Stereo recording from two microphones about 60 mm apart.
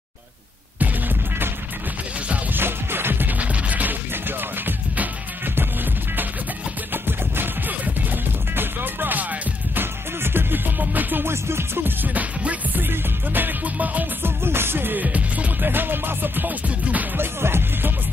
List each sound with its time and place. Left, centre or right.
0.7 s music: right
2.5 s music: right
3.3 s music: right
6.9 s music: right
14.4 s music: right
17.4 s music: right